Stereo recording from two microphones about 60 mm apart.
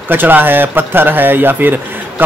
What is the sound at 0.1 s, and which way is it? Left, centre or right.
A man's voice, right.